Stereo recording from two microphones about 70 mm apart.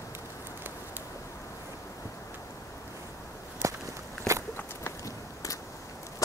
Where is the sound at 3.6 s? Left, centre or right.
Right.